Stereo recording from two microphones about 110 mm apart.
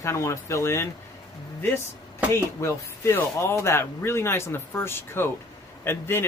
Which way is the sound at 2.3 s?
25° left (ahead or behind).